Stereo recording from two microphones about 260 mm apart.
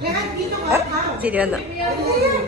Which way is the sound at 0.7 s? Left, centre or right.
Centre.